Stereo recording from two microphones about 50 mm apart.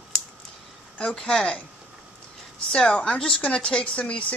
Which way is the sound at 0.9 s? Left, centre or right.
Centre.